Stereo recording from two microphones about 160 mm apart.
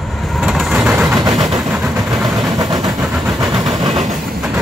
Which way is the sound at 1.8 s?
Centre (ahead or behind).